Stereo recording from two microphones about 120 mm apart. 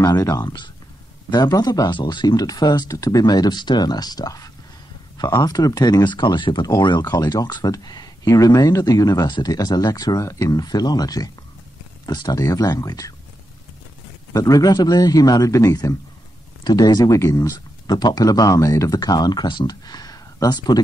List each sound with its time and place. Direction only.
0.0 s speech: 30° left (ahead or behind)
14.3 s speech: 30° left (ahead or behind)